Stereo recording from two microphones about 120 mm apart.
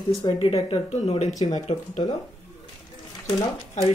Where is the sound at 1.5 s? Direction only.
80° left.